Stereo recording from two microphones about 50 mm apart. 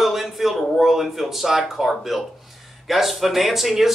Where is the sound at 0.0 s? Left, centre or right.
Centre.